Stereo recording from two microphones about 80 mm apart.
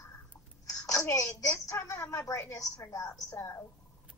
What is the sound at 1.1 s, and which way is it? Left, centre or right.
A woman's voice, left.